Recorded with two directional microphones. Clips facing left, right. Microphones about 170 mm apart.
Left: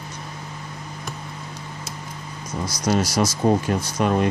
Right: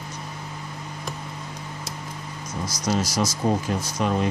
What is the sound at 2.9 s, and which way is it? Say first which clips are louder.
Speech: left 3 dB; 60° left (ahead or behind).